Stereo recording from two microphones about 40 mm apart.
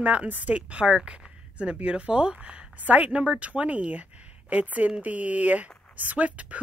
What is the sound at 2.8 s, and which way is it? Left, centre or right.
Speech, right.